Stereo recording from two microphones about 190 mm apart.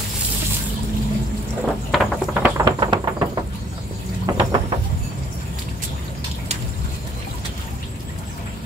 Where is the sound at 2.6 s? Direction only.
25° right (ahead or behind).